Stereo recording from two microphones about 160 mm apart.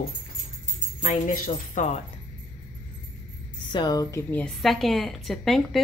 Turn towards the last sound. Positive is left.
turn(degrees=0)  # may be behind; listen again after turning